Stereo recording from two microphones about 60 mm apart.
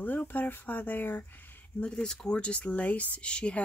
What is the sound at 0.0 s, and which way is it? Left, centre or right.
Speech, left.